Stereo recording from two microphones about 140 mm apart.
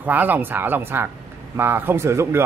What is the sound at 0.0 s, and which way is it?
Speech, 10° right (ahead or behind).